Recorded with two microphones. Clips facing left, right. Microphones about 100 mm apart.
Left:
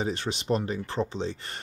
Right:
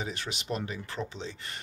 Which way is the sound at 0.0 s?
35° left (ahead or behind).